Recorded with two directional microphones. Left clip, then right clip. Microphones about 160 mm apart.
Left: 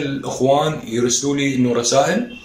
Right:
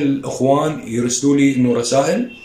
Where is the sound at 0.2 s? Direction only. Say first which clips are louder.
Left 3 dB; 10° right (ahead or behind).